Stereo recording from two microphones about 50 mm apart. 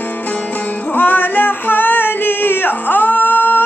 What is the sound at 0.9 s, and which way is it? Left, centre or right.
Music, left.